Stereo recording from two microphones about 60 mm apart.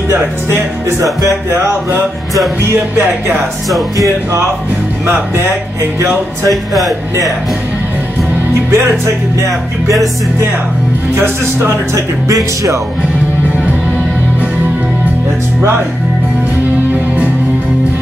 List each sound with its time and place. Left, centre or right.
0.1 s speech: right
5.0 s speech: right
5.9 s music: right
6.5 s a man's voice: centre
8.6 s speech: right
11.1 s speech: right